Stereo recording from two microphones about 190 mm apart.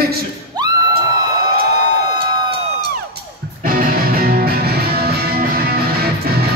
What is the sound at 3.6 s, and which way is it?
Music, 50° right (ahead or behind).